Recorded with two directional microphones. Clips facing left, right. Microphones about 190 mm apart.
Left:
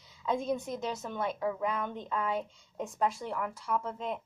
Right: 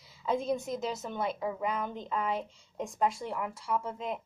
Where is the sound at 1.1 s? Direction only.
15° right (ahead or behind).